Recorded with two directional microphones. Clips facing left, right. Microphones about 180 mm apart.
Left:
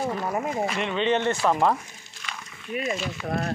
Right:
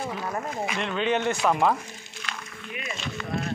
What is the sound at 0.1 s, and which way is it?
Speech, 5° left (ahead or behind).